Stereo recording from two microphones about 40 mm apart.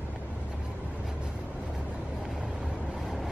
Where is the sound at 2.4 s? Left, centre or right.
Right.